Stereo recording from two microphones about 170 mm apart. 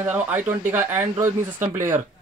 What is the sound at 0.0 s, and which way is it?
Speech, 10° right (ahead or behind).